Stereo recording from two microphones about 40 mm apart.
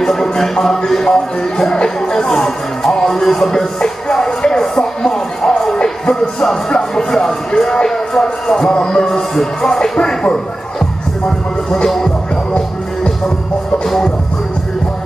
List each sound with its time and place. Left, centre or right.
0.0 s speech: centre
2.9 s music: centre
5.8 s music: left
9.6 s speech: centre
11.2 s a sound: centre
13.8 s music: centre